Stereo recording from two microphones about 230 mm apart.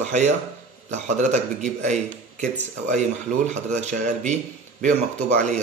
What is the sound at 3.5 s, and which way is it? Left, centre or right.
Speech, right.